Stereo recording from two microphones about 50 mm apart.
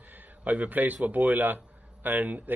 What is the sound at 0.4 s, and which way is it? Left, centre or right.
Speech, right.